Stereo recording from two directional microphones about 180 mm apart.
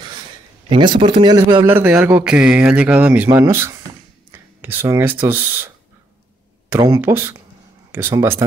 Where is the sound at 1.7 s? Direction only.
10° right (ahead or behind).